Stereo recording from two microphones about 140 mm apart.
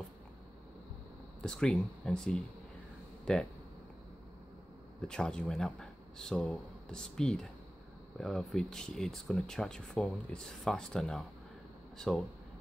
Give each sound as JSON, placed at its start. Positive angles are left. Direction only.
{"t": 1.4, "sound": "speech", "side_deg": 5}
{"t": 5.0, "sound": "speech", "side_deg": 5}